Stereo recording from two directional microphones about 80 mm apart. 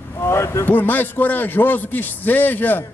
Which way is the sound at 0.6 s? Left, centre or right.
Left.